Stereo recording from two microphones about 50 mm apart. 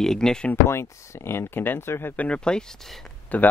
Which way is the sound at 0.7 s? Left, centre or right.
Left.